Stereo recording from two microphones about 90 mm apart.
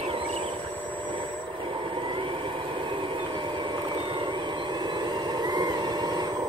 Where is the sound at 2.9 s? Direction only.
65° right (ahead or behind); by 6.4 s 50° right (ahead or behind).